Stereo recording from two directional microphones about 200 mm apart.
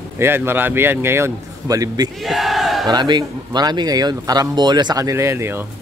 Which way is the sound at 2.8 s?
20° right (ahead or behind).